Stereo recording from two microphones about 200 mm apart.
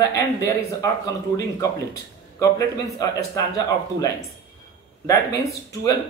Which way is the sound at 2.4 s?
15° left (ahead or behind).